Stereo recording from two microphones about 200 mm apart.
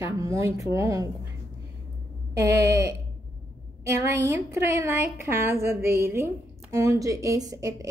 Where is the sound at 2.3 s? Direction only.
15° right (ahead or behind).